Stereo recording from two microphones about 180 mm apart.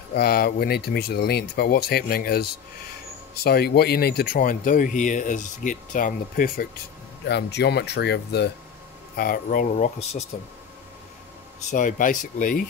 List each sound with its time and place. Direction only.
0.1 s speech: 60° left (ahead or behind)
7.2 s speech: 70° left (ahead or behind)
9.1 s speech: 55° left (ahead or behind)
11.7 s speech: 45° left (ahead or behind)